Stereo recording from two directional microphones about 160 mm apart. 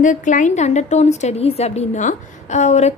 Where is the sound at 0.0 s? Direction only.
50° left (ahead or behind).